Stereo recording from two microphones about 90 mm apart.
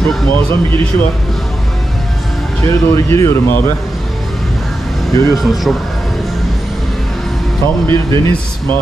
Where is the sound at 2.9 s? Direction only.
30° left (ahead or behind).